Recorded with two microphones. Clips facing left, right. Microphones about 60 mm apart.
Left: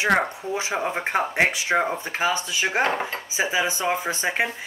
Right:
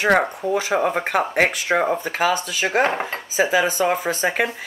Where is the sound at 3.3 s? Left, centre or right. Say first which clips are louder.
Right 6 dB; right.